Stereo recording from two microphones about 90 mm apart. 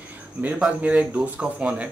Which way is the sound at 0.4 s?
10° right (ahead or behind).